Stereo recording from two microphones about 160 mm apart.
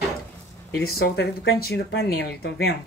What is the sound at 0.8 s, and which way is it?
Speech, 85° left.